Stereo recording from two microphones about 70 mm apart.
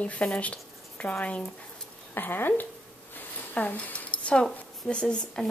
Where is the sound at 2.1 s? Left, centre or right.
Left.